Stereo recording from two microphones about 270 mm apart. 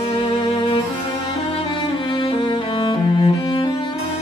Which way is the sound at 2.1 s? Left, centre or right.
Centre.